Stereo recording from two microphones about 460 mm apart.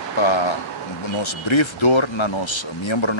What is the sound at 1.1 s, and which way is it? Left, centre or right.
Speech, left.